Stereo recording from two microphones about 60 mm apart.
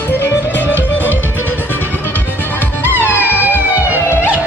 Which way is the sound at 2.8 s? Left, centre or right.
Left.